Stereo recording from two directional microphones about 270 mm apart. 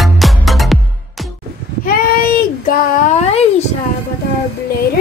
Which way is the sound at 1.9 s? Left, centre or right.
Left.